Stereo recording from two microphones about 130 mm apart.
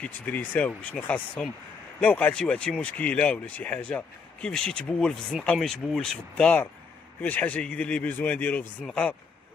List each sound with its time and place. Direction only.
0.0 s speech: 10° left (ahead or behind)